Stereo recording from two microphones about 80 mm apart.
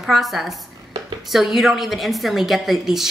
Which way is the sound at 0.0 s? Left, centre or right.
Centre.